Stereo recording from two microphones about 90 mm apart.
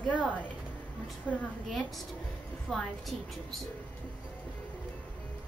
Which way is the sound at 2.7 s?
Centre (ahead or behind).